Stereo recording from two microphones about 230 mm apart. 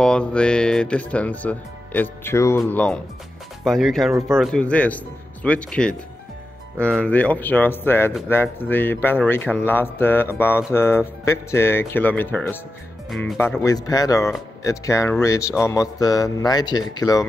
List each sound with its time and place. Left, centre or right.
0.0 s speech: centre
13.6 s speech: centre